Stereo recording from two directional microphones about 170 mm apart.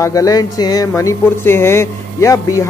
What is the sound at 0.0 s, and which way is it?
Speech, 20° left (ahead or behind).